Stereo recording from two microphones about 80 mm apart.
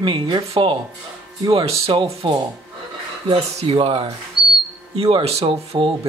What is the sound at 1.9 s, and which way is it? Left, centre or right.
Speech, right.